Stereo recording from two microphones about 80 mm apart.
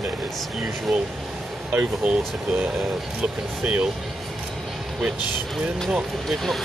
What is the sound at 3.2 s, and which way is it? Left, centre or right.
Speech, centre.